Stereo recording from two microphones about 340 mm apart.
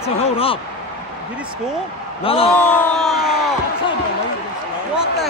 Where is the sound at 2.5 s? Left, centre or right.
Centre.